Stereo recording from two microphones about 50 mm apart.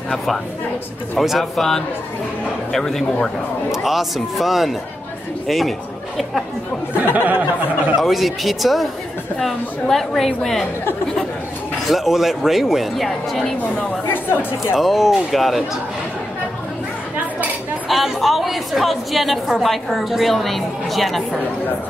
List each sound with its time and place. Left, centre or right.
1.1 s a woman's voice: centre
3.7 s a woman's voice: centre
7.2 s a sound: right
8.0 s a woman's voice: centre
11.9 s a woman's voice: centre
14.8 s a woman's voice: centre
17.8 s a woman's voice: centre